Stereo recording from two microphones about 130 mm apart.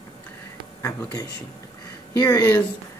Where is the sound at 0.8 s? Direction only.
25° left (ahead or behind).